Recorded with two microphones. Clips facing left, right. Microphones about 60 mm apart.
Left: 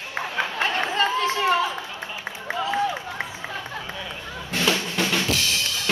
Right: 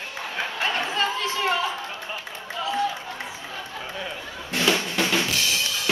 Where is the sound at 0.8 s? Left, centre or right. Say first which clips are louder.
Left 3 dB; left.